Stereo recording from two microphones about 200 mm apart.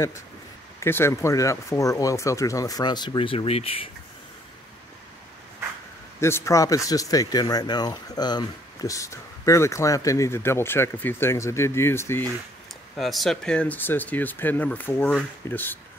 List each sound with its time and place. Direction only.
0.7 s speech: 10° left (ahead or behind); by 3.9 s 30° left (ahead or behind)
6.2 s speech: 15° left (ahead or behind)
12.9 s speech: centre (ahead or behind)